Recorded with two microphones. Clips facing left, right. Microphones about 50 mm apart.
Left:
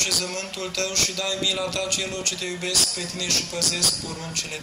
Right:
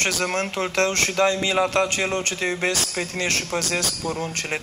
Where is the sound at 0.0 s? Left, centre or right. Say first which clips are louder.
Right 6 dB; right.